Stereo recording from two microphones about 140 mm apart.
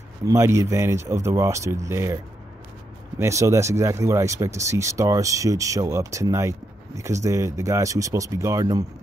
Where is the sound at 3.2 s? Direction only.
20° right (ahead or behind).